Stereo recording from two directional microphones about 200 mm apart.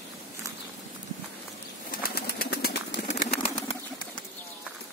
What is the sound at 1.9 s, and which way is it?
Pigeon, 50° left (ahead or behind).